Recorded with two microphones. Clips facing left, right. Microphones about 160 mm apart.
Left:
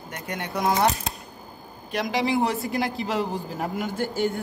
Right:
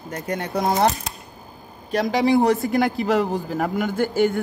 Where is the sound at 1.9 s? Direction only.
40° right (ahead or behind).